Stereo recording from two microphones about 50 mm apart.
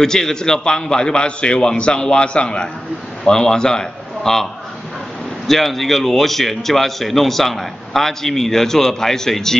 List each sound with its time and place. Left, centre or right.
0.0 s a man's voice: centre
5.5 s speech: centre